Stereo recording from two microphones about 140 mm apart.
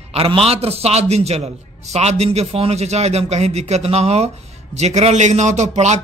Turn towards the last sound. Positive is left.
turn(degrees=-55)  # may be behind; listen again after turning